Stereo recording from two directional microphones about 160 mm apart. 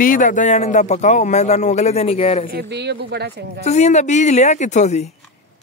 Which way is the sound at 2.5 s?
90° right.